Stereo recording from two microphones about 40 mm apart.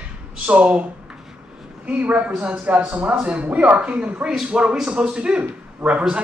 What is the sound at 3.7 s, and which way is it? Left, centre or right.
A man's voice, right.